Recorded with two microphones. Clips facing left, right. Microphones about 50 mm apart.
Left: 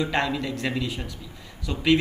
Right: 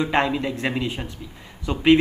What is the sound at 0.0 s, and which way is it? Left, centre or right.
Speech, right.